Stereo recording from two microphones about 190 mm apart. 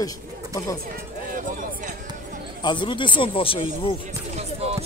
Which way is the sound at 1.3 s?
45° right (ahead or behind).